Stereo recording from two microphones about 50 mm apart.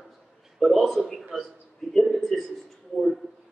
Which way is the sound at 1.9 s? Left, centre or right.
Centre.